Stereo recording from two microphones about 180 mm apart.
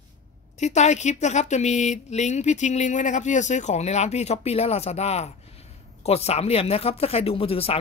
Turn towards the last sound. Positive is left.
turn(degrees=30)  # may be behind; listen again after turning